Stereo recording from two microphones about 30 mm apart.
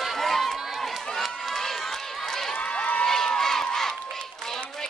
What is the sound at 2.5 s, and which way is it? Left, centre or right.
Run, left.